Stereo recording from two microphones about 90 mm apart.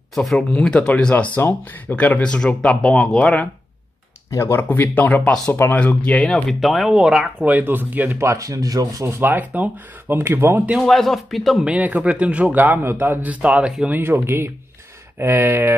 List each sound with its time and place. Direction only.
0.1 s speech: centre (ahead or behind)
4.3 s speech: 35° left (ahead or behind)
4.6 s speech: 20° left (ahead or behind)
5.5 s speech: 20° left (ahead or behind)
6.2 s speech: centre (ahead or behind)
7.4 s speech: 20° right (ahead or behind)
8.2 s speech: 35° right (ahead or behind)
9.0 s speech: 25° right (ahead or behind)
10.8 s speech: centre (ahead or behind)
11.6 s speech: 15° right (ahead or behind)
13.9 s speech: 25° right (ahead or behind)